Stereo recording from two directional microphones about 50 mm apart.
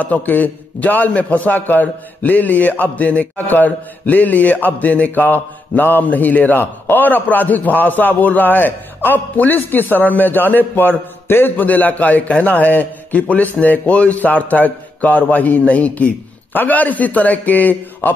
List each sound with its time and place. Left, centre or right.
0.0 s a man's voice: left